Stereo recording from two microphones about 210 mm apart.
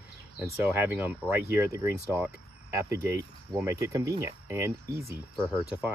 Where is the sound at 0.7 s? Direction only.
10° right (ahead or behind).